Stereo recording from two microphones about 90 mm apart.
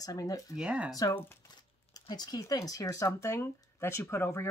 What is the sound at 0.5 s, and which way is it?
Speech, 15° right (ahead or behind).